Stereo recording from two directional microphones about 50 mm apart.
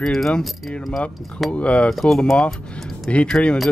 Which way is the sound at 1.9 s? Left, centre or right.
Centre.